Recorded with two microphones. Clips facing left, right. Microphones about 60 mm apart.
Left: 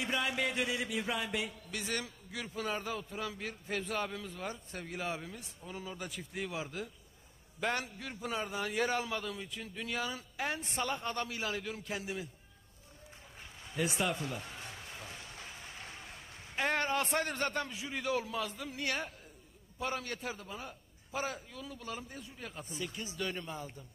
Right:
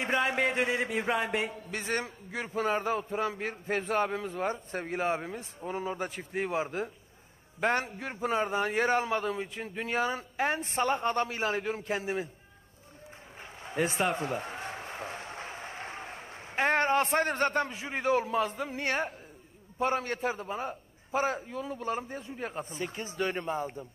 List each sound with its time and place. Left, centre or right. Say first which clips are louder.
0.0 s music: right 6 dB; right
13.4 s a sound: right 5 dB; right
19.8 s music: right 8 dB; right